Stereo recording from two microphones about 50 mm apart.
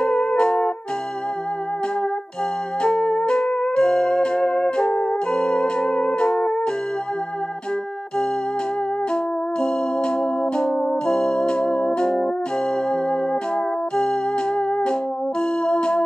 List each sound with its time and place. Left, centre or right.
0.0 s music: centre
2.8 s music: centre
9.1 s music: centre
15.6 s music: centre